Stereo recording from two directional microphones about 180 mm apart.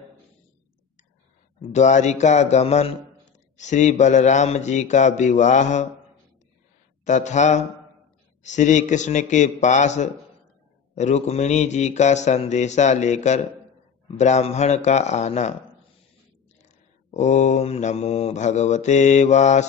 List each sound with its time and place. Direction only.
1.7 s mantra: 40° left (ahead or behind)
7.1 s mantra: 40° left (ahead or behind)
16.6 s mantra: 40° left (ahead or behind)